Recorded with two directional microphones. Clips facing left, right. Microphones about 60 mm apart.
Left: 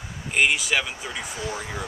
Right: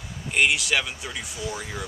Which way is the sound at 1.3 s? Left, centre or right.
Left.